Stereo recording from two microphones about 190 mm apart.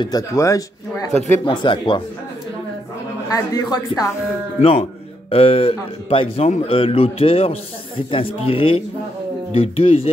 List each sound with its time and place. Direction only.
0.0 s a man's voice: 20° left (ahead or behind)
3.3 s speech: 20° left (ahead or behind)
4.6 s a man's voice: 30° left (ahead or behind)